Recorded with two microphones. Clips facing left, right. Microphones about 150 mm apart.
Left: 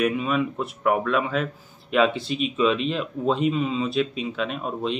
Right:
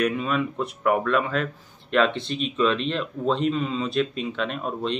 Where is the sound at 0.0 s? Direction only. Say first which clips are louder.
Left 1 dB; 5° left (ahead or behind).